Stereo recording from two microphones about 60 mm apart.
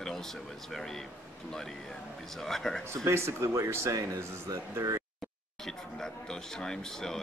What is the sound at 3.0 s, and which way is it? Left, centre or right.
Speech, right.